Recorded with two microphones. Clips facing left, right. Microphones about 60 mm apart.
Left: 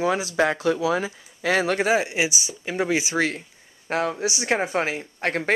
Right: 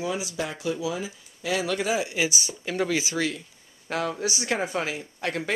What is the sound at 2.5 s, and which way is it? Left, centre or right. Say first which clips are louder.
Speech: left 2 dB; centre.